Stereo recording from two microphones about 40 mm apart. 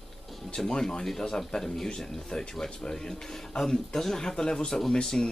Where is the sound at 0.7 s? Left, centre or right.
Centre.